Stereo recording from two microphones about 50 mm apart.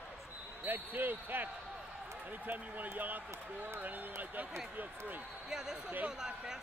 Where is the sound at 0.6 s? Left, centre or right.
Right.